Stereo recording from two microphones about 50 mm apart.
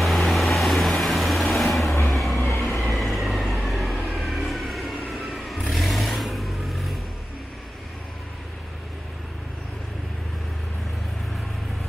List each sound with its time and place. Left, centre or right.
0.0 s vehicle: centre
1.9 s vehicle: left
2.1 s vehicle: centre